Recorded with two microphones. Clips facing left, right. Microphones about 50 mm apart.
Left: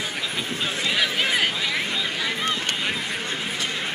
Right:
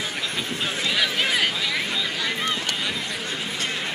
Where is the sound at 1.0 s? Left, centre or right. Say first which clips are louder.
Even; centre.